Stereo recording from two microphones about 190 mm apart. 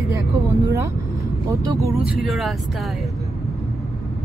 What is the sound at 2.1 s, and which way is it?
Speech, centre (ahead or behind).